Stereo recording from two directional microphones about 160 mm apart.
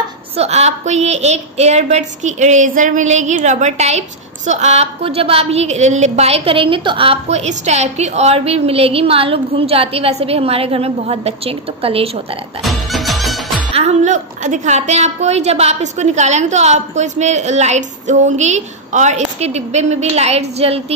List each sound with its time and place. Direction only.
0.4 s a woman's voice: 45° right (ahead or behind)
12.6 s music: centre (ahead or behind)
13.7 s a woman's voice: 45° right (ahead or behind)